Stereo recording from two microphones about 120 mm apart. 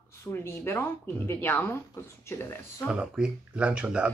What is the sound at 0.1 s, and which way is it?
Speech, 20° left (ahead or behind).